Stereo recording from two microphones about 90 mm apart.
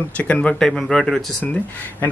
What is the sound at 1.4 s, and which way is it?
Speech, 15° left (ahead or behind).